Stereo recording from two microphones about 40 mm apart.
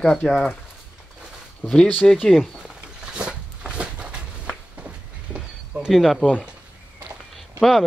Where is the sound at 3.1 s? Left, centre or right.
Right.